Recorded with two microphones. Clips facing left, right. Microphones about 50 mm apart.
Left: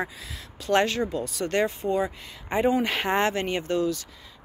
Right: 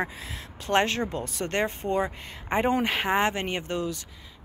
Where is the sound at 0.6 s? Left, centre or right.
Right.